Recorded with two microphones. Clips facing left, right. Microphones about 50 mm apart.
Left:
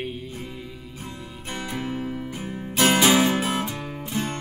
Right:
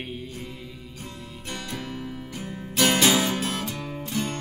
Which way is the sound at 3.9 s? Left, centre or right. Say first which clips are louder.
Even; centre.